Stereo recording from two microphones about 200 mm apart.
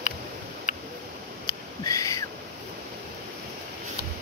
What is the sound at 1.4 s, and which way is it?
Owl, 15° left (ahead or behind).